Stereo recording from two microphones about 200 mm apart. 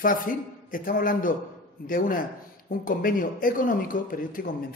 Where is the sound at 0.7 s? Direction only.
45° left (ahead or behind).